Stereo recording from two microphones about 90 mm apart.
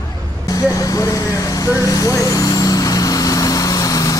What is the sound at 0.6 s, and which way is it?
Vehicle, 40° left (ahead or behind).